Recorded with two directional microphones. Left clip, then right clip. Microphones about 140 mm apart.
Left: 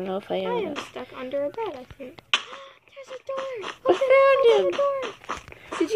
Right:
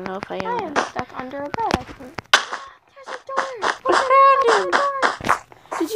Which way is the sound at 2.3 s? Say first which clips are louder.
Right 8 dB; 45° right (ahead or behind).